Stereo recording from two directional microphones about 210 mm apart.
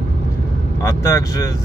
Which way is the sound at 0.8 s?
15° left (ahead or behind).